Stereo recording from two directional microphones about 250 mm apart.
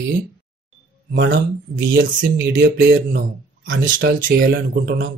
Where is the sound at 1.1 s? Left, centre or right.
Right.